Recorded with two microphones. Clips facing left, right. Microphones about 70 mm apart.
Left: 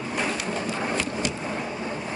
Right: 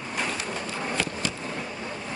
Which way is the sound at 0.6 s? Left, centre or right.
Centre.